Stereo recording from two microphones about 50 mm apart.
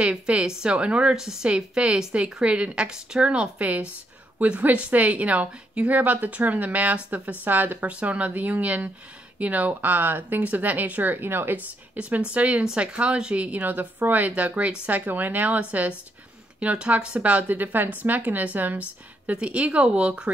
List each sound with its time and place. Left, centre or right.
0.0 s speech: right
7.8 s speech: right